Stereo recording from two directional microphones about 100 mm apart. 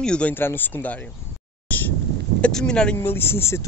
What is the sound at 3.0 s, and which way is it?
Speech, 20° left (ahead or behind).